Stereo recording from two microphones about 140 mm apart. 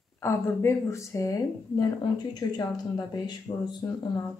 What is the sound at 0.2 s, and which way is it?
Speech, 20° left (ahead or behind).